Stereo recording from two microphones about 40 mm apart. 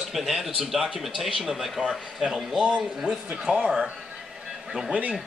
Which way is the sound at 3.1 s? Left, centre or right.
Right.